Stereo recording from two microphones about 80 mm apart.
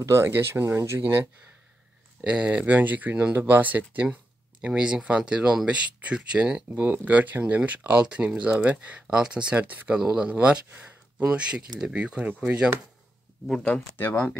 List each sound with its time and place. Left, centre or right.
0.0 s speech: right
2.2 s speech: centre
13.5 s speech: centre
13.9 s speech: left